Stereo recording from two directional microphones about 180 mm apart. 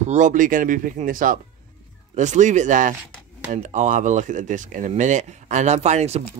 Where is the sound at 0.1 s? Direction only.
45° right (ahead or behind).